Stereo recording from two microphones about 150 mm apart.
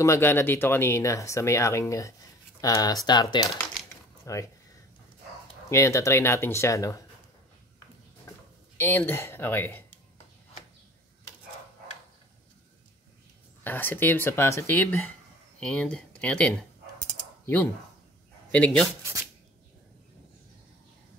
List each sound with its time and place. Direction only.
0.0 s speech: 15° left (ahead or behind)
5.7 s speech: 20° left (ahead or behind)
8.7 s speech: 15° left (ahead or behind)
13.7 s speech: 15° left (ahead or behind)
18.5 s speech: 5° left (ahead or behind)